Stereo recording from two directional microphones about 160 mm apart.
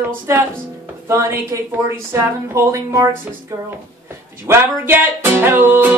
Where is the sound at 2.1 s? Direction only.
15° right (ahead or behind).